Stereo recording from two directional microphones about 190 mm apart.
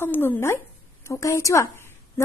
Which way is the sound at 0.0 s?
10° left (ahead or behind).